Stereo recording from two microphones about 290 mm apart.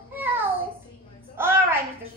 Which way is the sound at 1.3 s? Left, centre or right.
Centre.